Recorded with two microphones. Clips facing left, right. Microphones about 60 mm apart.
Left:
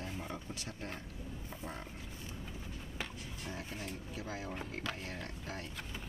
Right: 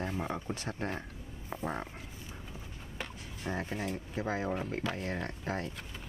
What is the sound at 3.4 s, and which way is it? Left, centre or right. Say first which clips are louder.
Speech: right 9 dB; right.